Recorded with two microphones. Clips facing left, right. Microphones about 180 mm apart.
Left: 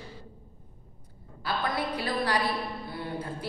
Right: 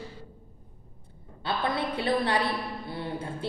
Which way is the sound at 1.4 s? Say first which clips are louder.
Right 1 dB; 25° right (ahead or behind).